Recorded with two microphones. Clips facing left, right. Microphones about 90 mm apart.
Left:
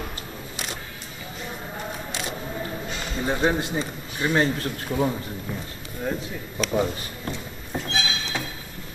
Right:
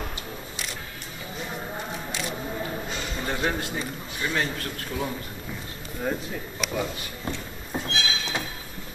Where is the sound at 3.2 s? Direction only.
20° left (ahead or behind).